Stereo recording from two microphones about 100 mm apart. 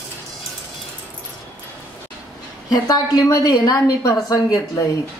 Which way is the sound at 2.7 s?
40° left (ahead or behind).